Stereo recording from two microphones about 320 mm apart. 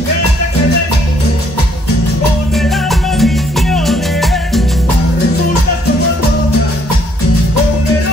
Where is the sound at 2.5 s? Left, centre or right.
Centre.